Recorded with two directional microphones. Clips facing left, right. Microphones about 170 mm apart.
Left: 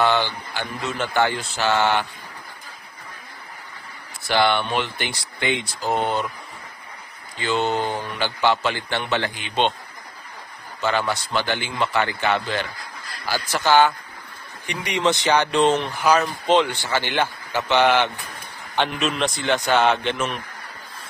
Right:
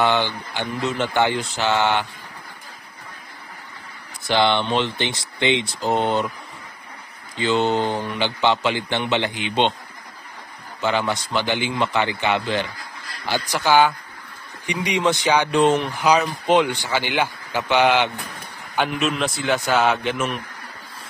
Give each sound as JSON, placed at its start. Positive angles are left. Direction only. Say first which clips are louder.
{"t": 0.0, "sound": "speech", "louder": "even", "side_deg": -15}
{"t": 4.3, "sound": "a man's voice", "louder": "right 1 dB", "side_deg": -20}
{"t": 7.3, "sound": "a man's voice", "louder": "right 3 dB", "side_deg": -20}
{"t": 10.8, "sound": "a man's voice", "louder": "right 1 dB", "side_deg": -15}